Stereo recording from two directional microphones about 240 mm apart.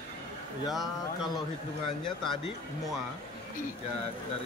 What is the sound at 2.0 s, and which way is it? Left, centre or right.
Speech, centre.